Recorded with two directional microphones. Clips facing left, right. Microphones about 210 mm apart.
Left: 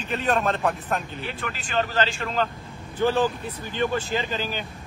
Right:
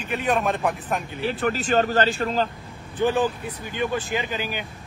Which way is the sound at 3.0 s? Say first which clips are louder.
Even; 15° right (ahead or behind).